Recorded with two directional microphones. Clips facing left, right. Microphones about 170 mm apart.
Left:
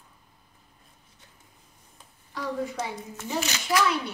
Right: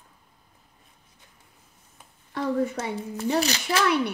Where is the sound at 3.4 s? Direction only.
35° right (ahead or behind).